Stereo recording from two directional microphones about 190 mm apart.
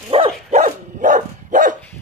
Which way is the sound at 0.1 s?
30° right (ahead or behind).